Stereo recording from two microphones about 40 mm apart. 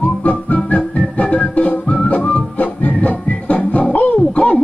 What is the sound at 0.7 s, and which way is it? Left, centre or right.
Organ, left.